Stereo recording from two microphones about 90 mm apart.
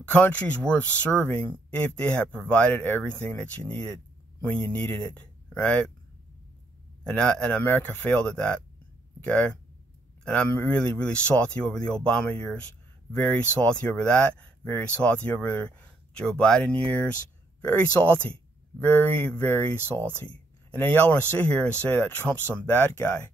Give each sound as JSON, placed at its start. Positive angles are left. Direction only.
{"t": 0.1, "sound": "speech", "side_deg": 15}
{"t": 7.1, "sound": "speech", "side_deg": 10}